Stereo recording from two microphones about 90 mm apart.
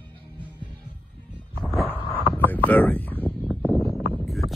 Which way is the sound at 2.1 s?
20° left (ahead or behind).